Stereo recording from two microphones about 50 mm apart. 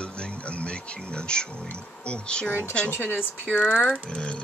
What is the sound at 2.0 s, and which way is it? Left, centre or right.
Speech, left.